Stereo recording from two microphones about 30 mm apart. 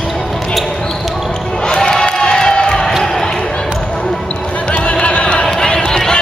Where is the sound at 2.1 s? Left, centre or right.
Left.